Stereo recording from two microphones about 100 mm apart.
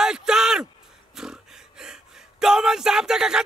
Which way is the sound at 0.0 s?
5° right (ahead or behind).